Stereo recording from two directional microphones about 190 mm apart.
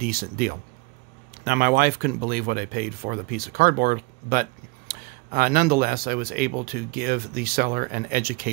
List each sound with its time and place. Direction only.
0.0 s speech: 50° right (ahead or behind)